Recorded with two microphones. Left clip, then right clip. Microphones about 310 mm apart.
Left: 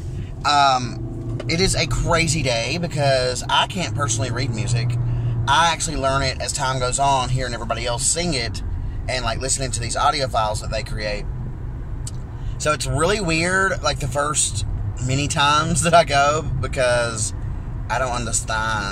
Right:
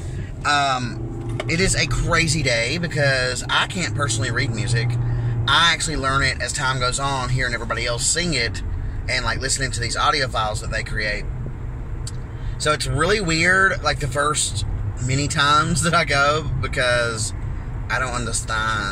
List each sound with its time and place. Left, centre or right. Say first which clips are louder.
0.4 s speech: left 3 dB; centre
12.6 s speech: even; centre